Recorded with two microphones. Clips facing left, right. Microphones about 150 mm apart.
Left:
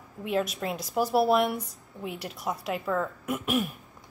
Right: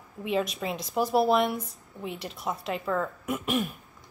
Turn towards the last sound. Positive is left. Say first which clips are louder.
# even
turn(degrees=5)  # may be behind; listen again after turning